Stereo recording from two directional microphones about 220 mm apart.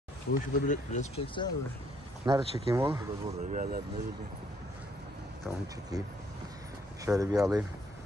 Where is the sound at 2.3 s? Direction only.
20° right (ahead or behind).